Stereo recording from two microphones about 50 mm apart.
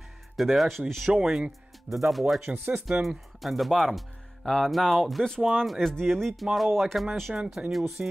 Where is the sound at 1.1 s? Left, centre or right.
Centre.